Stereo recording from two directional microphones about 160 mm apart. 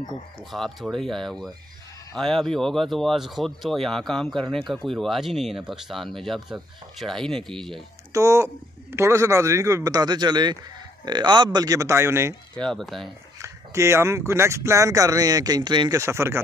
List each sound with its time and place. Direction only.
0.4 s speech: centre (ahead or behind)
8.1 s speech: 20° right (ahead or behind)
12.5 s speech: 5° left (ahead or behind)
13.4 s speech: 15° right (ahead or behind)
16.0 s speech: 15° right (ahead or behind)